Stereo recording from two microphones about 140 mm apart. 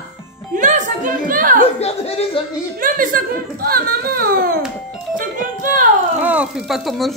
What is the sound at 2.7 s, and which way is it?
A child's voice, 75° right (ahead or behind).